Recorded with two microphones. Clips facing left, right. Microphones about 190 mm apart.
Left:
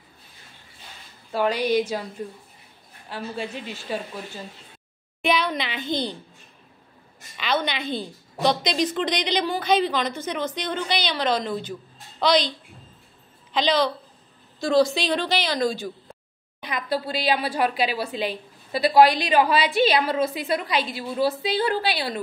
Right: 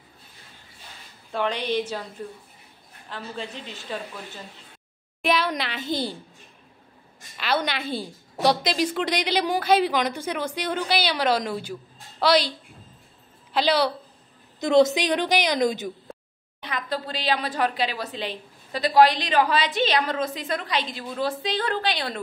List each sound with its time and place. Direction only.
1.3 s a woman's voice: 5° left (ahead or behind)
5.2 s a woman's voice: centre (ahead or behind)
7.3 s a woman's voice: 5° right (ahead or behind)
14.6 s a woman's voice: 20° right (ahead or behind)
16.6 s a woman's voice: 10° left (ahead or behind)